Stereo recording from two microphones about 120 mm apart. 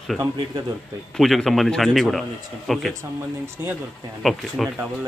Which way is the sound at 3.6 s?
20° right (ahead or behind).